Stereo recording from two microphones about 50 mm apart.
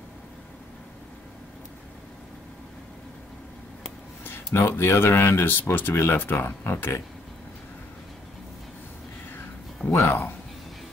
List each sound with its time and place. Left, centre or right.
4.6 s speech: left
9.9 s speech: left